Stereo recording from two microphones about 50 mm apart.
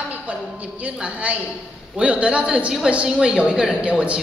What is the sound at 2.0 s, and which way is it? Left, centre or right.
A woman's voice, right.